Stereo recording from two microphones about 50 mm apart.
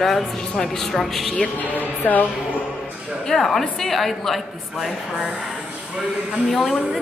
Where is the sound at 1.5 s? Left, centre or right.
Left.